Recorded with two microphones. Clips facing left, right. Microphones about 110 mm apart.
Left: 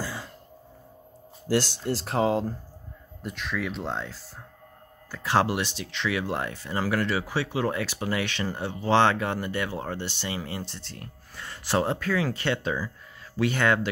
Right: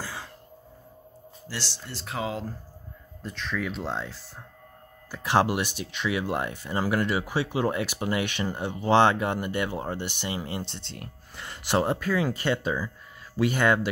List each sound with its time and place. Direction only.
1.5 s speech: 45° left (ahead or behind)
3.2 s speech: 10° left (ahead or behind); by 13.7 s 10° right (ahead or behind)